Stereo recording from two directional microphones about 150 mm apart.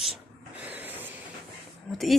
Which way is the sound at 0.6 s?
10° right (ahead or behind).